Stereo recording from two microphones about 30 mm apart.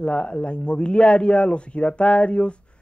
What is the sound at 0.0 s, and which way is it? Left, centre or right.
Speech, left.